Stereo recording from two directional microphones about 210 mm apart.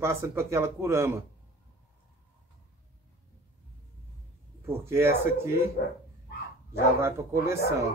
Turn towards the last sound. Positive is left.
turn(degrees=-15)  # may be behind; listen again after turning